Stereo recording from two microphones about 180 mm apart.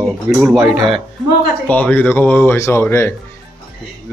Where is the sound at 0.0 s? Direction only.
5° right (ahead or behind).